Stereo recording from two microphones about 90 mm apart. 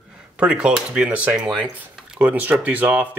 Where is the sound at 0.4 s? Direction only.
10° right (ahead or behind).